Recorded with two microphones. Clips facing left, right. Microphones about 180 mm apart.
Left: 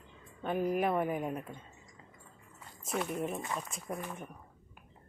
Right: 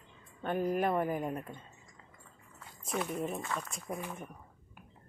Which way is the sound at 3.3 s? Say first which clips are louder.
Even; 15° left (ahead or behind).